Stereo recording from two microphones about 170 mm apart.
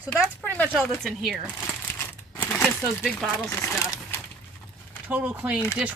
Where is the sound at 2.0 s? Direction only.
10° left (ahead or behind).